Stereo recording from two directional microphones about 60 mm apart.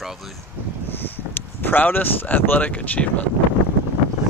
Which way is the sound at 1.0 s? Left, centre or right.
Left.